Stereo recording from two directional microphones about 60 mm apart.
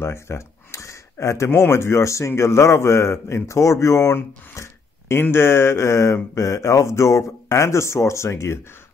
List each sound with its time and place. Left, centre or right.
0.0 s a man's voice: left
5.3 s mantra: left
6.3 s a man's voice: left